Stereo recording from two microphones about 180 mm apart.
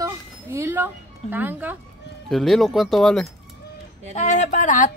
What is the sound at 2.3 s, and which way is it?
Speech, centre (ahead or behind).